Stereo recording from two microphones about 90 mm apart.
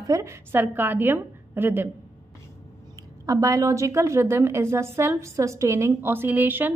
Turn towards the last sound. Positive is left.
turn(degrees=-20)  # may be behind; listen again after turning